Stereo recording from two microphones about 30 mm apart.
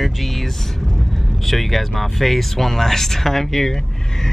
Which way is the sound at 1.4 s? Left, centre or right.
Centre.